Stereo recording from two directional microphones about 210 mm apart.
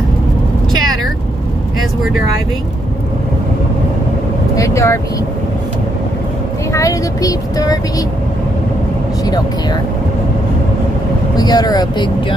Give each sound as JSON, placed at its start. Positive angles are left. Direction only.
{"t": 4.6, "sound": "speech", "side_deg": 15}
{"t": 6.7, "sound": "speech", "side_deg": 15}
{"t": 11.3, "sound": "speech", "side_deg": 20}